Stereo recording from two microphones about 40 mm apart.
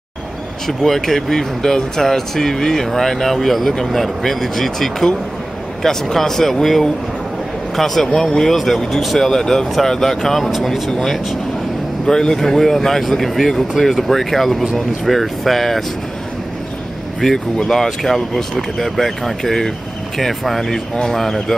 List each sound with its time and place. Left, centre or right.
0.7 s speech: centre
9.3 s speech: centre
12.1 s speech: centre
17.2 s speech: centre